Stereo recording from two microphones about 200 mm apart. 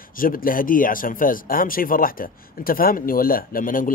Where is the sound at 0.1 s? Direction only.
45° left (ahead or behind).